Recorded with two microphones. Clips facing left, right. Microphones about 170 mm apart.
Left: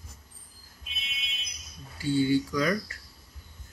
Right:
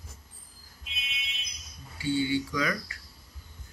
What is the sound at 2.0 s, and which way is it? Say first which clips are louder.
Speech: left 3 dB; 40° left (ahead or behind).